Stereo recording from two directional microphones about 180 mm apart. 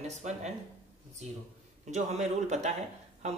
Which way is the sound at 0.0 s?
40° right (ahead or behind).